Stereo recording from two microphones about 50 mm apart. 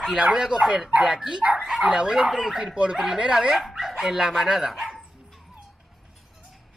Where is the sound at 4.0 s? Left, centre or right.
Centre.